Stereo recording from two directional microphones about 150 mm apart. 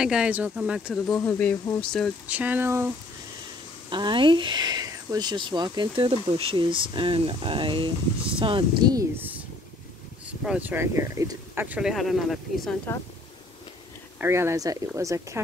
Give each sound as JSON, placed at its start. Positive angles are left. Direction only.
{"t": 0.0, "sound": "speech", "side_deg": -5}
{"t": 2.2, "sound": "speech", "side_deg": -10}
{"t": 3.9, "sound": "speech", "side_deg": -30}
{"t": 9.1, "sound": "a sound", "side_deg": -10}
{"t": 10.4, "sound": "speech", "side_deg": -10}
{"t": 11.6, "sound": "speech", "side_deg": -5}
{"t": 14.1, "sound": "speech", "side_deg": -15}